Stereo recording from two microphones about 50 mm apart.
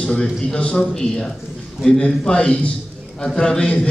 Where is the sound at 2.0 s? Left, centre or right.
Left.